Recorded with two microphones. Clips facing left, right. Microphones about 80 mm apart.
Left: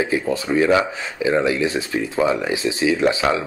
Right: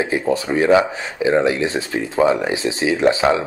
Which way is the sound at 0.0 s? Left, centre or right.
Right.